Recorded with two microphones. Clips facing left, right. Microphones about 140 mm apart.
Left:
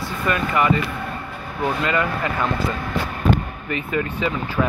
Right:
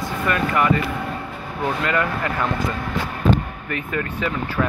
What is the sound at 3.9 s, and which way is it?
Speech, 10° left (ahead or behind).